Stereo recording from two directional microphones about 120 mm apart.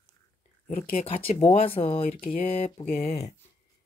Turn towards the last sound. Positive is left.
turn(degrees=65)  # may be behind; listen again after turning